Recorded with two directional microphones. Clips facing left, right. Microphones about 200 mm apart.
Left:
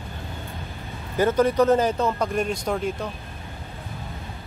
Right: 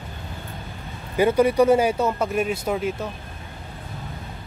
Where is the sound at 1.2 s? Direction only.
10° right (ahead or behind).